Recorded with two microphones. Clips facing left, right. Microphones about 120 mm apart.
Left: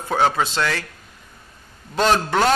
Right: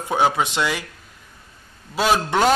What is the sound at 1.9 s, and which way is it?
Speech, 5° right (ahead or behind).